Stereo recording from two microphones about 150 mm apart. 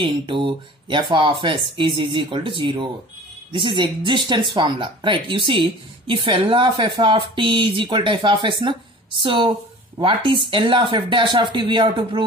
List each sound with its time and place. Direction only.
0.0 s speech: 35° right (ahead or behind)